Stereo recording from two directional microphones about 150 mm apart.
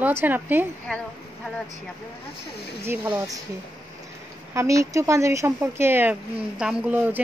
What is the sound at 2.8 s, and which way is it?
Speech, 15° right (ahead or behind).